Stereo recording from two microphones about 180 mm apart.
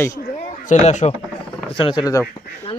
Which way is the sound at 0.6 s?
40° left (ahead or behind).